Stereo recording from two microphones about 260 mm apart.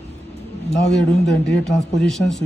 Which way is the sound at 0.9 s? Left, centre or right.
Left.